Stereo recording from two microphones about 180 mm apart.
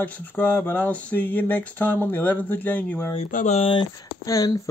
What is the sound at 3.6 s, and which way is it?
Speech, 30° left (ahead or behind).